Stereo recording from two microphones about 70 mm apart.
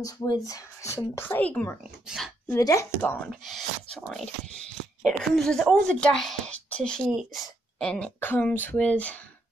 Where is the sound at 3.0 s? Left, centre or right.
Left.